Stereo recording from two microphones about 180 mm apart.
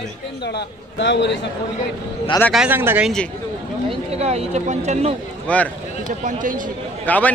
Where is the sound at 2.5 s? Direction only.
5° right (ahead or behind).